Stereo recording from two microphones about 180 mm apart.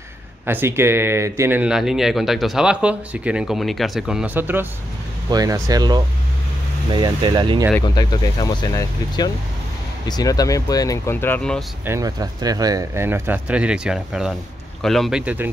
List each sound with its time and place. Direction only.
0.5 s speech: 15° right (ahead or behind)
5.3 s speech: 20° right (ahead or behind)
7.8 s speech: 20° left (ahead or behind); by 11.6 s 5° left (ahead or behind)
11.8 s speech: 15° right (ahead or behind)